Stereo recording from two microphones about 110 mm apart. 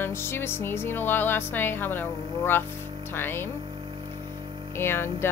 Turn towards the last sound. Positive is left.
turn(degrees=20)  # may be behind; listen again after turning